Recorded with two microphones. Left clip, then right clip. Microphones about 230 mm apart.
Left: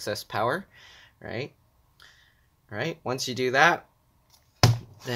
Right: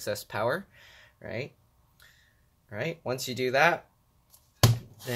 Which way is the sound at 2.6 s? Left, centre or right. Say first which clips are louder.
Left 2 dB; centre.